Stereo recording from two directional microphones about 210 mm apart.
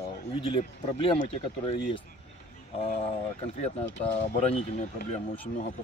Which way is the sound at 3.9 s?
35° left (ahead or behind).